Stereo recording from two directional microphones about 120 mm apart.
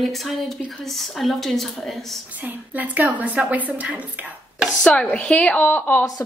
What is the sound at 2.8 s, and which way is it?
A woman's voice, 15° right (ahead or behind).